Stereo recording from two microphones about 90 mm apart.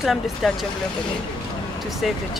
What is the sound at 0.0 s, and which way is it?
Speech, centre (ahead or behind).